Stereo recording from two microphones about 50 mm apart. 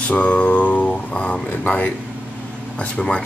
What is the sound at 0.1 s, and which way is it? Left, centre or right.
Mantra, left.